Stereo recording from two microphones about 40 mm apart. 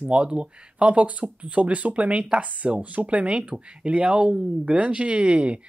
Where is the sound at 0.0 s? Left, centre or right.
Right.